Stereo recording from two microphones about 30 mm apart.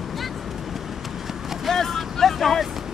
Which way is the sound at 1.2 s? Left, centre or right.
Centre.